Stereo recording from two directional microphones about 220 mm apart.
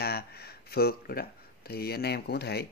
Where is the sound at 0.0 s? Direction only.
45° left (ahead or behind).